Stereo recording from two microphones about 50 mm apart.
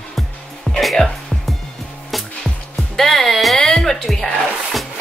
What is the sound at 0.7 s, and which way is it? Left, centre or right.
Music, centre.